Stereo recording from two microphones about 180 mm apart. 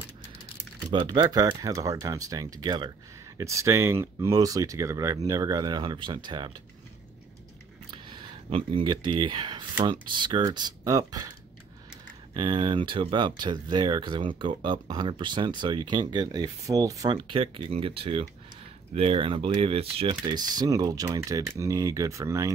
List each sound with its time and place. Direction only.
0.9 s speech: 25° right (ahead or behind)
7.9 s a sound: 25° right (ahead or behind)
9.8 s speech: 25° right (ahead or behind)
12.4 s speech: 25° right (ahead or behind)